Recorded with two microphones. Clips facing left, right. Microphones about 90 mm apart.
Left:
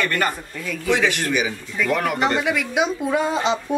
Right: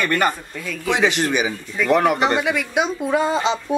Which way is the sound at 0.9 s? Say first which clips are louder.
Right 1 dB; 20° right (ahead or behind).